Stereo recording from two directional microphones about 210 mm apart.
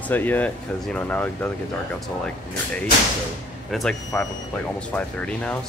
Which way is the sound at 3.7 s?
Centre (ahead or behind).